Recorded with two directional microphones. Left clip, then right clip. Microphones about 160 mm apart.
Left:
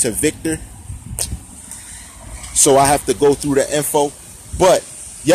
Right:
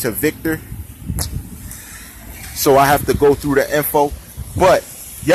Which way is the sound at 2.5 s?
30° left (ahead or behind).